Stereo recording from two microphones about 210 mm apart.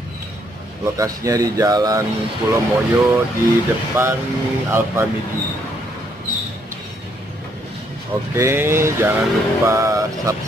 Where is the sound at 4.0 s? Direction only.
10° right (ahead or behind).